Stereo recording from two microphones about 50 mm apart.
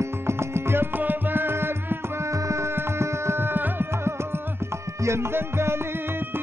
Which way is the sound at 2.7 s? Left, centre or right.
Right.